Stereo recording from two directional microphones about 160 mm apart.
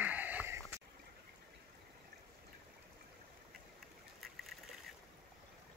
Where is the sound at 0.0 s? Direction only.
10° right (ahead or behind).